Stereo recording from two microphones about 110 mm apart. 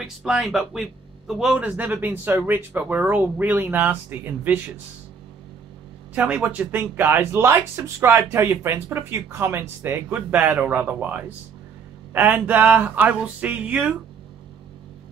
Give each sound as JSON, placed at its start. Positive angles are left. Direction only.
{"t": 0.0, "sound": "speech", "side_deg": -5}
{"t": 1.6, "sound": "speech", "side_deg": -15}
{"t": 6.1, "sound": "speech", "side_deg": -15}